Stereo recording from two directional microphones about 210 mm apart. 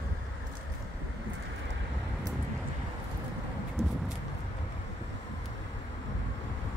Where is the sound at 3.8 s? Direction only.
30° right (ahead or behind).